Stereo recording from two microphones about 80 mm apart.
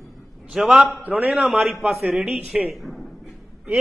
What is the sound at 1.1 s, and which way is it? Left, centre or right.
Speech, centre.